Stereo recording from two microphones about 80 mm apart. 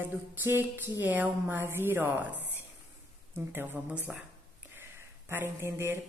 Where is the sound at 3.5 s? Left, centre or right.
Right.